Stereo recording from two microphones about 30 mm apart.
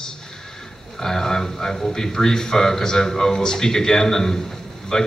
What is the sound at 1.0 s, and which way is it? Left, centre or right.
A man's voice, centre.